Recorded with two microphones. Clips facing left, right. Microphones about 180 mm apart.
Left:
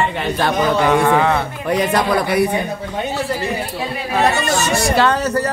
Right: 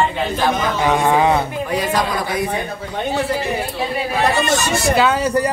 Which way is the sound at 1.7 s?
65° left (ahead or behind).